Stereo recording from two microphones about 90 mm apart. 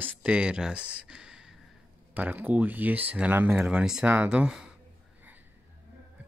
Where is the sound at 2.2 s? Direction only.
20° right (ahead or behind).